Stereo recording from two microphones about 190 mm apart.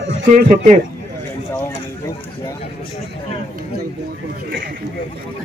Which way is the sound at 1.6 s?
15° left (ahead or behind).